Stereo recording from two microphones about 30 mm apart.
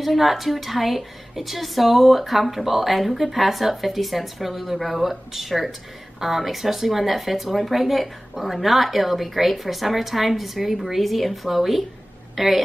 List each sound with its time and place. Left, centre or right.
0.0 s a woman's voice: centre